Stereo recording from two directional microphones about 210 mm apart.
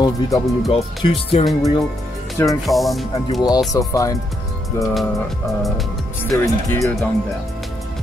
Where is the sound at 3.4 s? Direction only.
20° left (ahead or behind).